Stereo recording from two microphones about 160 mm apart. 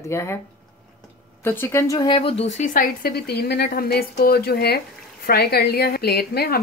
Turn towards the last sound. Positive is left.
turn(degrees=70)  # may be behind; listen again after turning